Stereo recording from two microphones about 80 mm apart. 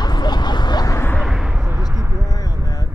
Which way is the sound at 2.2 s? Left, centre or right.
Left.